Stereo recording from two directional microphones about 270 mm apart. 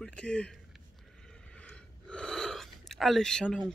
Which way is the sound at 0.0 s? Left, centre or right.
Centre.